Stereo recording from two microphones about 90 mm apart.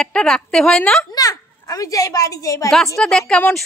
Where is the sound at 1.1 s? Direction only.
40° left (ahead or behind).